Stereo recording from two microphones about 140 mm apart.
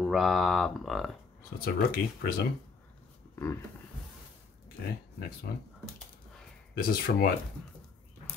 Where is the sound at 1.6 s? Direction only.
90° left.